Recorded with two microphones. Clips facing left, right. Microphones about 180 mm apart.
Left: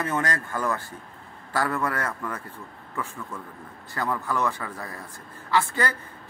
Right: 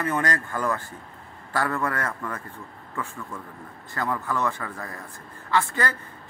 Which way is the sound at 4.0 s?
20° left (ahead or behind).